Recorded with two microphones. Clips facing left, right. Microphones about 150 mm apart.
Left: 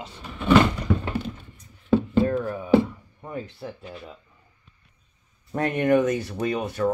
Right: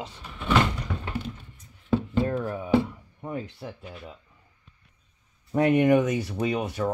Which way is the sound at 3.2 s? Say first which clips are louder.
Even; 15° right (ahead or behind).